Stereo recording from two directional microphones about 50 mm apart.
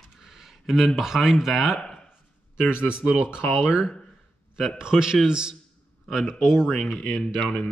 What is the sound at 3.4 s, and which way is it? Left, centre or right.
Speech, left.